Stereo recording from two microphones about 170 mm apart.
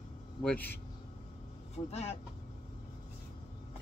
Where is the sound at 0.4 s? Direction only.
5° left (ahead or behind).